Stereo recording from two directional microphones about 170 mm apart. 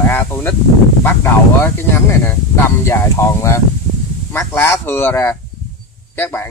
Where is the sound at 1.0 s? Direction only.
15° left (ahead or behind).